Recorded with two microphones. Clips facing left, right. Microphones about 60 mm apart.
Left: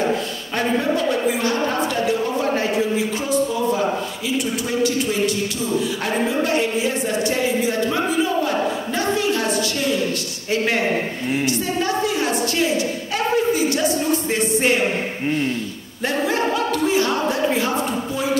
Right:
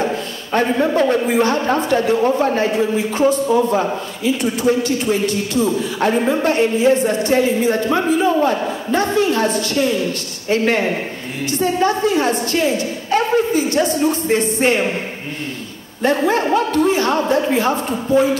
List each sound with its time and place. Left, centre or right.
0.9 s a woman's voice: right
5.6 s a woman's voice: right
11.8 s a woman's voice: right
14.3 s a woman's voice: right
16.1 s a woman's voice: right